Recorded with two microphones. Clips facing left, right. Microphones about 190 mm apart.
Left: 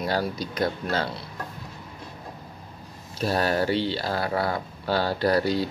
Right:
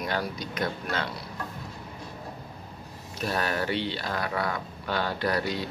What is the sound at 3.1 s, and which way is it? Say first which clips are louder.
Speech: left 5 dB; 35° left (ahead or behind).